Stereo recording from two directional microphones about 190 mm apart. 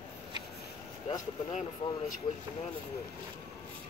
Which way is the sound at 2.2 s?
20° left (ahead or behind).